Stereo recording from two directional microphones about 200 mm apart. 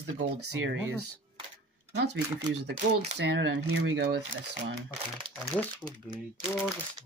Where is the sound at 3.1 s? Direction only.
65° right (ahead or behind).